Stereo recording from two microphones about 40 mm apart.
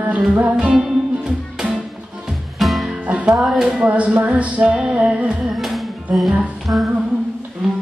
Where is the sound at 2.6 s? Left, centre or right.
Centre.